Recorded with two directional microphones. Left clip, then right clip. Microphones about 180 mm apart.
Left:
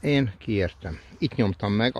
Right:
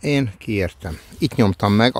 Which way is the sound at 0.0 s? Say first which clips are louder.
Right 3 dB; 20° right (ahead or behind).